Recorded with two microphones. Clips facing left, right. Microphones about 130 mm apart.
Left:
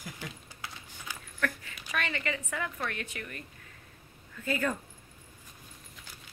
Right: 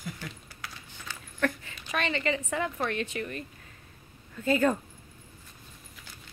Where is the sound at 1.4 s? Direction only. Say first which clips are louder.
Right 5 dB; 25° right (ahead or behind).